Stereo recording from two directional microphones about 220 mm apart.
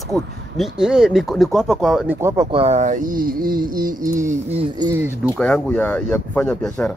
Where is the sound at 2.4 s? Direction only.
25° right (ahead or behind).